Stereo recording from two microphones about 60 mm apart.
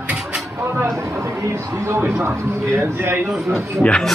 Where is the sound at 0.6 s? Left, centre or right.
Right.